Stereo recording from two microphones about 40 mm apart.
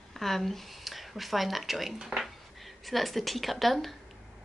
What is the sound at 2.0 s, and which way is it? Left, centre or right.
Speech, centre.